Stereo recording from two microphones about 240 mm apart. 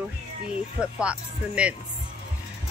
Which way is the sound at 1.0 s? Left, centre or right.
Centre.